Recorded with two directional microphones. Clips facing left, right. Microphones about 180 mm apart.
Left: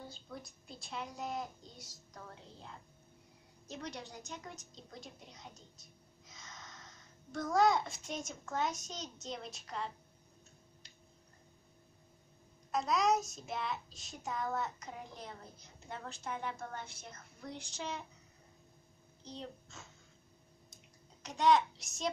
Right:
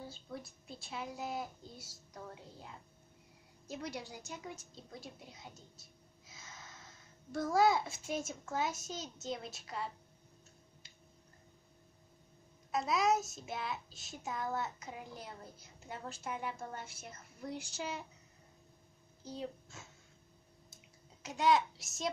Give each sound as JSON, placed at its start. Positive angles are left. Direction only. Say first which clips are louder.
{"t": 0.0, "sound": "a child's voice", "louder": "right 2 dB", "side_deg": -5}
{"t": 3.6, "sound": "a woman's voice", "louder": "right 2 dB", "side_deg": -10}
{"t": 12.7, "sound": "a child's voice", "louder": "even", "side_deg": -5}
{"t": 19.2, "sound": "a child's voice", "louder": "right 4 dB", "side_deg": -5}
{"t": 20.7, "sound": "a sound", "louder": "even", "side_deg": -5}